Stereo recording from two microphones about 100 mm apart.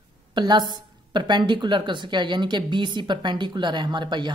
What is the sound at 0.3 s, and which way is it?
A woman's voice, 50° right (ahead or behind).